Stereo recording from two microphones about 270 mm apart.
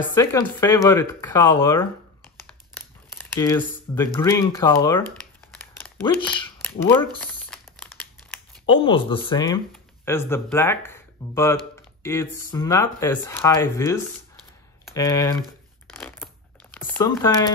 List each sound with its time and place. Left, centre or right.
0.1 s speech: centre
5.8 s a sound: centre
7.2 s crumpling: centre
8.6 s speech: centre
15.0 s speech: centre
16.0 s a sound: centre
16.7 s typing: centre